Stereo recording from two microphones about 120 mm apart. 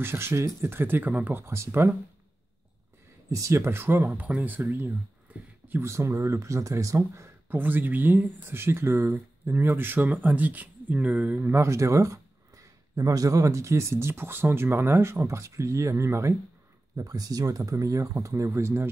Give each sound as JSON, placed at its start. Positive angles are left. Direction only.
{"t": 0.0, "sound": "speech", "side_deg": -20}
{"t": 3.3, "sound": "speech", "side_deg": -25}